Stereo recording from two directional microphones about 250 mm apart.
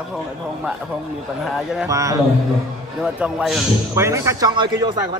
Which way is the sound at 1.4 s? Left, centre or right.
Centre.